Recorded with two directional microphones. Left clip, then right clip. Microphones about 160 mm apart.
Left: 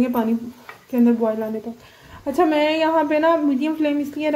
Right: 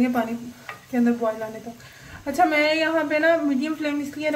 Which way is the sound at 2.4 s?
30° left (ahead or behind).